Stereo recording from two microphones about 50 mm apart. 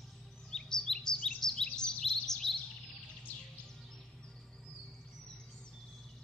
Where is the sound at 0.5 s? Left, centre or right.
Centre.